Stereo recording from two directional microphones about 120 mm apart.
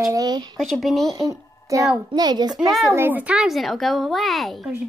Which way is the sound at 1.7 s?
25° right (ahead or behind).